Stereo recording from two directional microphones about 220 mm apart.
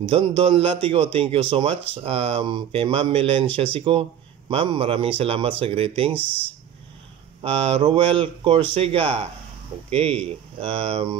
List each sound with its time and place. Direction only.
0.1 s speech: 25° right (ahead or behind)
7.4 s speech: 25° right (ahead or behind)